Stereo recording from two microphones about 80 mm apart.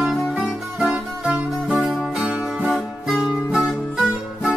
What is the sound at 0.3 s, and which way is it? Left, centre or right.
Music, centre.